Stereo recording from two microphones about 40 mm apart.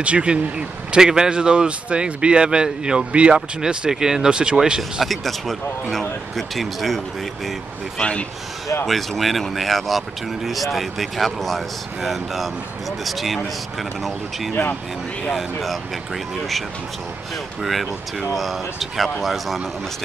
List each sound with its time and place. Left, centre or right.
0.0 s speech: right
5.0 s speech: centre
8.0 s a man's voice: left
9.2 s speech: centre
15.3 s speech: centre